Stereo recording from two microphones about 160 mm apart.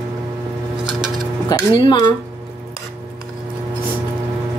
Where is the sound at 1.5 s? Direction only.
30° left (ahead or behind).